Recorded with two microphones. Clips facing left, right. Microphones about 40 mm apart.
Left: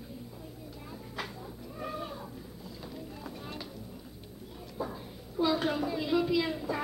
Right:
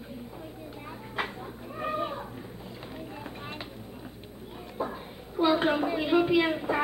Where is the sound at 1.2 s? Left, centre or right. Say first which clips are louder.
Right 7 dB; right.